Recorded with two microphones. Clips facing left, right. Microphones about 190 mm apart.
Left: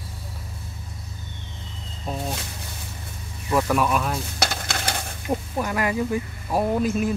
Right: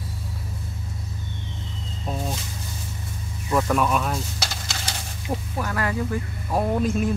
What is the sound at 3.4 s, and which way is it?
Speech, 5° left (ahead or behind).